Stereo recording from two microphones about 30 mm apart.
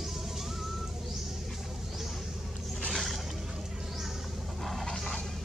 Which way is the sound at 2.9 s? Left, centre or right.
Centre.